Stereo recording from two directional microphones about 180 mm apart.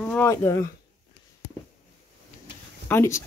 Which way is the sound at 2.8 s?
15° left (ahead or behind).